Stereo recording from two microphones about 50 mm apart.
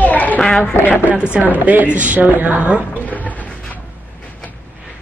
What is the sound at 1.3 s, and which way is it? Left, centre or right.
A woman's voice, right.